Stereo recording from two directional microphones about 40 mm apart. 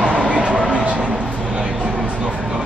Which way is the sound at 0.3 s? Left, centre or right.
Right.